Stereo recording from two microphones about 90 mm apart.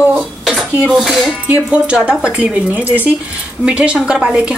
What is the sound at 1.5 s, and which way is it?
A woman's voice, 15° right (ahead or behind).